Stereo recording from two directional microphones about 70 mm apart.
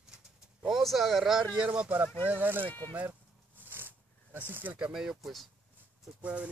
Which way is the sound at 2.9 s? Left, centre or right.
Right.